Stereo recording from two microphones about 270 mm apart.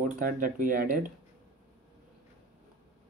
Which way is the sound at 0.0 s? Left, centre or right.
Right.